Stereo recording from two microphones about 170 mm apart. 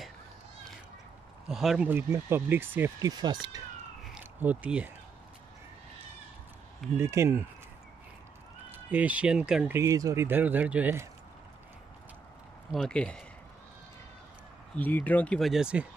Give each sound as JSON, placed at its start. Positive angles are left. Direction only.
{"t": 1.5, "sound": "speech", "side_deg": 0}
{"t": 4.1, "sound": "a sound", "side_deg": -10}
{"t": 7.0, "sound": "speech", "side_deg": -15}
{"t": 8.7, "sound": "speech", "side_deg": -10}
{"t": 12.7, "sound": "speech", "side_deg": 5}
{"t": 14.8, "sound": "speech", "side_deg": 10}